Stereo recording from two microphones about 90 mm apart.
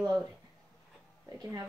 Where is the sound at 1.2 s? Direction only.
40° right (ahead or behind).